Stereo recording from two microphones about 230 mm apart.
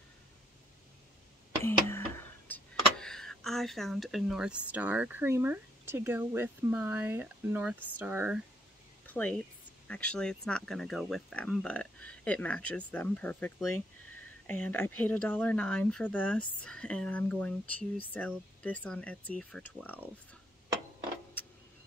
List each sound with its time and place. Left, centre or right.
1.6 s speech: centre
9.0 s speech: centre